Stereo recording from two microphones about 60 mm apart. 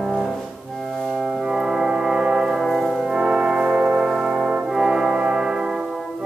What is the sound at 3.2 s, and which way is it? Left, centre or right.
Brass instrument, centre.